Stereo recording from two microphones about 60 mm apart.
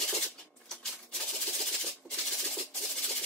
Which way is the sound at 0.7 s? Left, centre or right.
Centre.